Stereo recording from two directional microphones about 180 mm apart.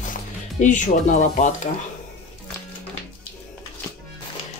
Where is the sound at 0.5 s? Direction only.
45° left (ahead or behind).